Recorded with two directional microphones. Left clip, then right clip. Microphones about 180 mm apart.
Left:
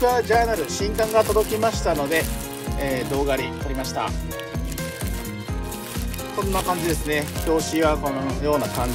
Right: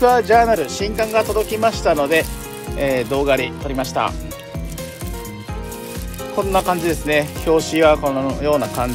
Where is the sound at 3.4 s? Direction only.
10° left (ahead or behind).